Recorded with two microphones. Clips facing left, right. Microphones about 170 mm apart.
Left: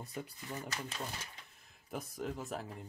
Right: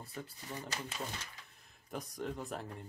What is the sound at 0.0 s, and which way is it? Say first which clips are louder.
Speech: left 2 dB; 20° left (ahead or behind).